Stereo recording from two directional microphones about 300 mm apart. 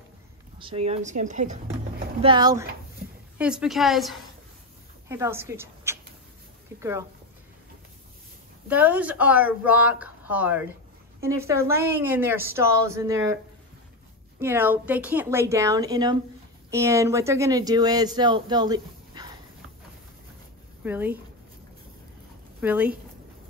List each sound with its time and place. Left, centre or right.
0.6 s speech: centre
3.3 s a woman's voice: centre
8.6 s speech: centre
14.4 s speech: centre
20.8 s speech: centre
22.6 s speech: centre